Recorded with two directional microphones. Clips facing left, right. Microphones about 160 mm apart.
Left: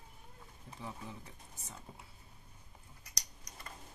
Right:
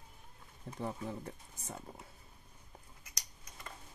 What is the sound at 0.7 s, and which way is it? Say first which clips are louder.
Speech: right 7 dB; 60° right (ahead or behind).